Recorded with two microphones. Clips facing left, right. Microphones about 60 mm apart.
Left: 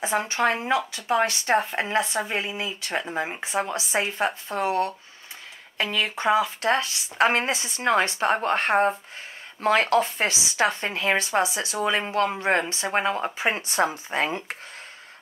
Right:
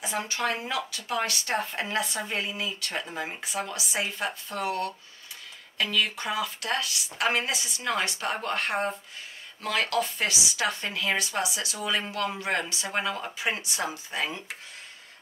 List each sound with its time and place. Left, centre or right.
0.0 s speech: left